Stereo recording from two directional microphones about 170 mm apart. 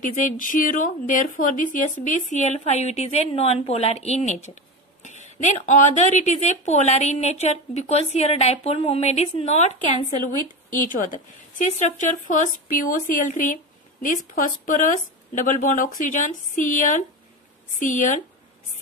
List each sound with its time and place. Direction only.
0.0 s a woman's voice: 50° left (ahead or behind)